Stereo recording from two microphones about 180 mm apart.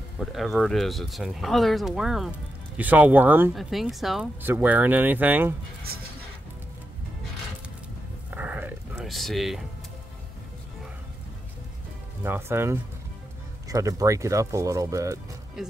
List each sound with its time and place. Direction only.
0.2 s speech: centre (ahead or behind)
8.4 s dog: 10° right (ahead or behind)
8.9 s speech: centre (ahead or behind)
12.2 s speech: 15° right (ahead or behind)